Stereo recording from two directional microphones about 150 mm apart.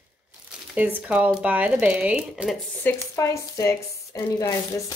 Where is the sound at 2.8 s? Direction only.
20° left (ahead or behind).